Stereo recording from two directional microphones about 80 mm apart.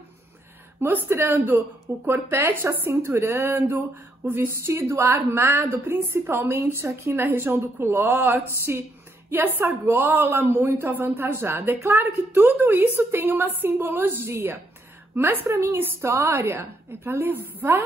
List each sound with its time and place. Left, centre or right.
0.7 s a woman's voice: right